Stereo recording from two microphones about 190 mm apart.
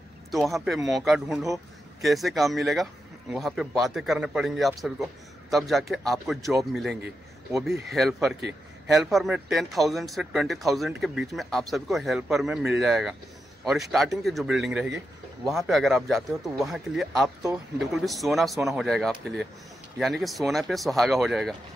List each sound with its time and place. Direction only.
0.3 s speech: centre (ahead or behind)